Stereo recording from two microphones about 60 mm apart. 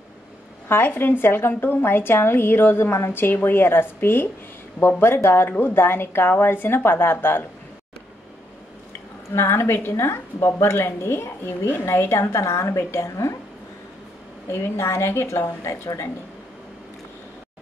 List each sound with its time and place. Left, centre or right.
0.7 s a woman's voice: left
9.3 s speech: left
14.5 s speech: left